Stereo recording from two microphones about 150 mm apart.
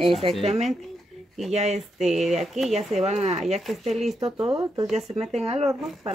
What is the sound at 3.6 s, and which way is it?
Speech, centre (ahead or behind).